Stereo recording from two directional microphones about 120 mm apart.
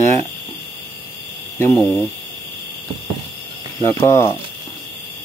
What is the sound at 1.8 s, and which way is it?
Speech, centre (ahead or behind).